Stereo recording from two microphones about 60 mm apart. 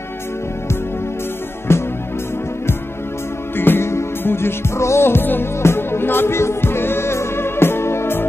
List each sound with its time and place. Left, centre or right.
1.7 s music: left
3.5 s music: left